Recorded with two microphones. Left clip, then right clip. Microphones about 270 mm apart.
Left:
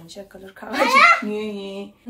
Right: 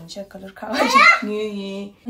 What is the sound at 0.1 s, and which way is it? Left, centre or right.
Speech, centre.